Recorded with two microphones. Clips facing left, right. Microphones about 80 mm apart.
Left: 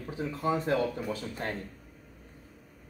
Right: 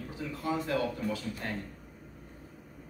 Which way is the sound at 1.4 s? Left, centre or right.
Left.